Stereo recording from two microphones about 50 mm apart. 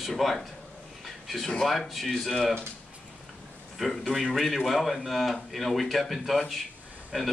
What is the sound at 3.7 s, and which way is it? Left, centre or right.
A man's voice, centre.